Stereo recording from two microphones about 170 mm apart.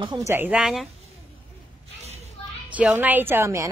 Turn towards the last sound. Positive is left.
turn(degrees=-15)  # may be behind; listen again after turning